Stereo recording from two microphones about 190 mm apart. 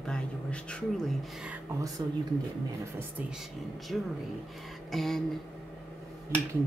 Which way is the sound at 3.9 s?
Centre (ahead or behind).